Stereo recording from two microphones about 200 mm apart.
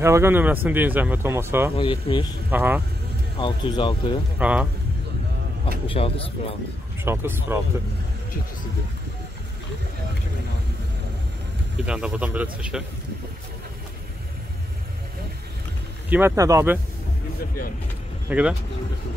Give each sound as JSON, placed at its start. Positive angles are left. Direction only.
{"t": 0.0, "sound": "speech", "side_deg": -15}
{"t": 1.8, "sound": "speech", "side_deg": 25}
{"t": 2.5, "sound": "speech", "side_deg": -10}
{"t": 3.3, "sound": "speech", "side_deg": 25}
{"t": 4.4, "sound": "speech", "side_deg": -5}
{"t": 5.9, "sound": "speech", "side_deg": 30}
{"t": 7.1, "sound": "speech", "side_deg": -10}
{"t": 11.8, "sound": "a man's voice", "side_deg": -5}
{"t": 16.1, "sound": "speech", "side_deg": -10}
{"t": 18.3, "sound": "a man's voice", "side_deg": -5}